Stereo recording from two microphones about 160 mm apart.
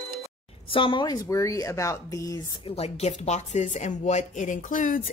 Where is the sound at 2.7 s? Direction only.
40° left (ahead or behind).